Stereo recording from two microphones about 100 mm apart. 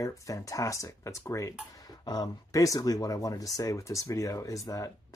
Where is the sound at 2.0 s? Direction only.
40° left (ahead or behind).